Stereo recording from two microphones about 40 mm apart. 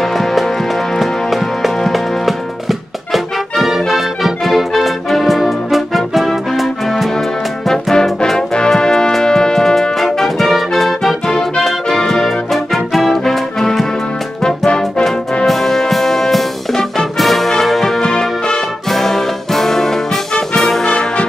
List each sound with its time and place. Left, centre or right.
0.0 s music: centre
3.1 s music: centre
7.6 s brass instrument: centre
8.4 s music: centre
20.8 s brass instrument: centre